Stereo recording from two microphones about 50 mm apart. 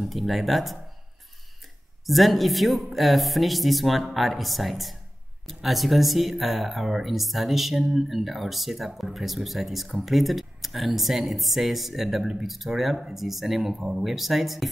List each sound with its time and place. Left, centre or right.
0.0 s speech: centre
2.0 s speech: centre
13.7 s speech: centre
14.0 s speech: centre